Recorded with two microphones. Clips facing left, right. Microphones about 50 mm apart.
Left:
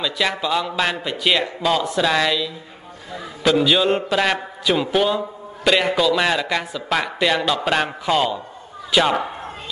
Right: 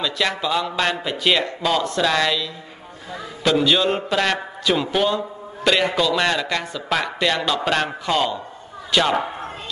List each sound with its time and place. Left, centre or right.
0.0 s a man's voice: centre